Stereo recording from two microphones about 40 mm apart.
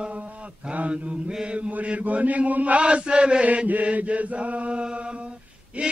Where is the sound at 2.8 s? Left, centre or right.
Right.